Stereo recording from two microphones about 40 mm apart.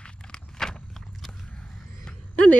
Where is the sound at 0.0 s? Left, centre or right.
Centre.